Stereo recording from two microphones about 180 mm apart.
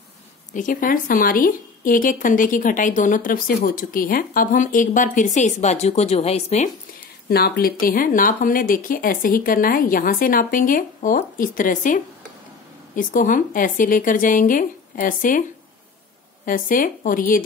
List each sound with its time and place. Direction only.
0.5 s a woman's voice: 45° left (ahead or behind)
7.2 s a woman's voice: 60° left (ahead or behind)
16.4 s a woman's voice: 50° left (ahead or behind)